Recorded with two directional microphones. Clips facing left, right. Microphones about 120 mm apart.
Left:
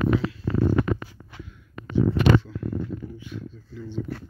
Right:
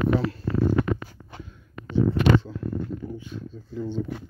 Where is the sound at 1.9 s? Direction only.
30° right (ahead or behind).